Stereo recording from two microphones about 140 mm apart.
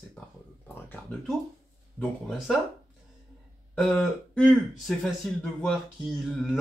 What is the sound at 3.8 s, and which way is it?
A man's voice, 5° left (ahead or behind).